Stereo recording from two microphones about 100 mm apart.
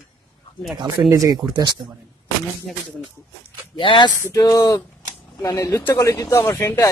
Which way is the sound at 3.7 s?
50° left (ahead or behind).